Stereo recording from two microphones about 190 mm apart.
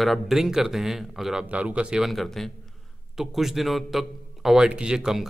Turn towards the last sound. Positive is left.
turn(degrees=-5)  # may be behind; listen again after turning